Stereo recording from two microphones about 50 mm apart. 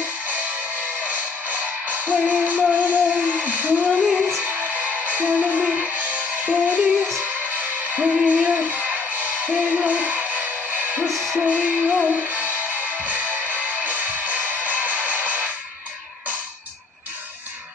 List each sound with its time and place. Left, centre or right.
1.0 s music: right
2.8 s a sound: right
4.4 s music: right
8.0 s music: centre
8.3 s music: right
11.1 s music: centre
11.4 s music: right